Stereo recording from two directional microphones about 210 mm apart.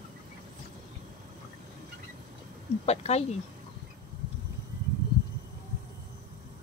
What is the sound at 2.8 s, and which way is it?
Speech, 30° left (ahead or behind).